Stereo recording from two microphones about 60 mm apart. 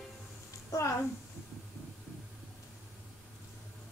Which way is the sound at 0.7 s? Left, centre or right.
Left.